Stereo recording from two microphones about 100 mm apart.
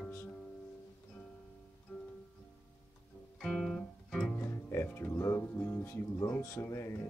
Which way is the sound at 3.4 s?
5° left (ahead or behind).